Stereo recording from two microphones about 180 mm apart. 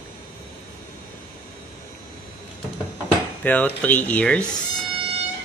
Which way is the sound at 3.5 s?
10° left (ahead or behind).